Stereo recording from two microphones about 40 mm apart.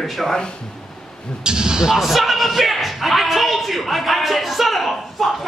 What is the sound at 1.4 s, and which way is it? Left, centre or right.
Speech, centre.